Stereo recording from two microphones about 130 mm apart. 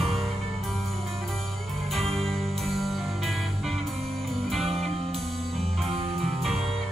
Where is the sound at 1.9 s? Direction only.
Centre (ahead or behind).